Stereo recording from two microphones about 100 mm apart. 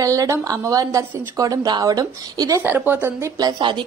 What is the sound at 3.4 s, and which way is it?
Speech, 50° right (ahead or behind).